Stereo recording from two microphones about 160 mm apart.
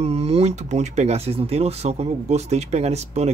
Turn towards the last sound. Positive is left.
turn(degrees=-40)  # may be behind; listen again after turning